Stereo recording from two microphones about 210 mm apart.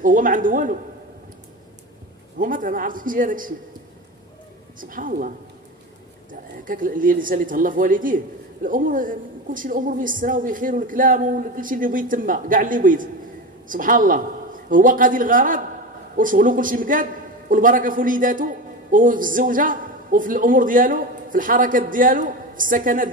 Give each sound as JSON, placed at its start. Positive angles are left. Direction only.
{"t": 0.0, "sound": "a man's voice", "side_deg": -40}
{"t": 2.3, "sound": "a man's voice", "side_deg": -40}
{"t": 4.7, "sound": "a man's voice", "side_deg": -40}
{"t": 6.6, "sound": "a man's voice", "side_deg": -40}